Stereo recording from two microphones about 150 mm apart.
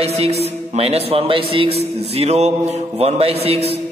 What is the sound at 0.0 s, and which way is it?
A man's voice, 45° right (ahead or behind).